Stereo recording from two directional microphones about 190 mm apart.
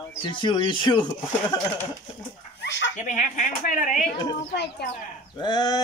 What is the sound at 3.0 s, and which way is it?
Speech, 40° left (ahead or behind).